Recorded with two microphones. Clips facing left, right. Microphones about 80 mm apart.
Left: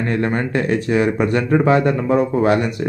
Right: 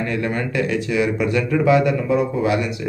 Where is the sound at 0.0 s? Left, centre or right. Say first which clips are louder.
Left 3 dB; left.